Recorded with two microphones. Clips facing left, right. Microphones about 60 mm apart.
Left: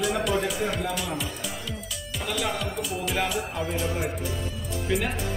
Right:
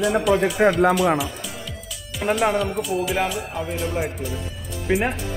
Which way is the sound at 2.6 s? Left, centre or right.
Centre.